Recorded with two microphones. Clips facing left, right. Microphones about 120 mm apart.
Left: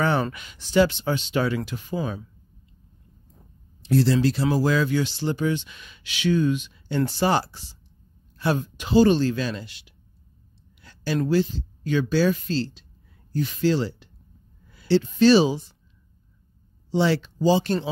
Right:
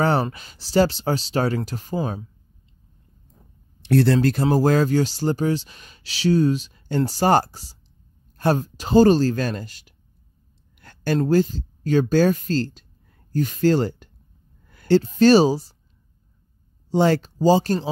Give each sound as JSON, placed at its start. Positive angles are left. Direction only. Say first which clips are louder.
{"t": 0.0, "sound": "speech", "louder": "right 3 dB", "side_deg": -35}
{"t": 3.8, "sound": "speech", "louder": "right 3 dB", "side_deg": -60}
{"t": 10.8, "sound": "a sound", "louder": "right 5 dB", "side_deg": -50}
{"t": 11.2, "sound": "speech", "louder": "right 2 dB", "side_deg": -45}
{"t": 16.9, "sound": "speech", "louder": "right 3 dB", "side_deg": -45}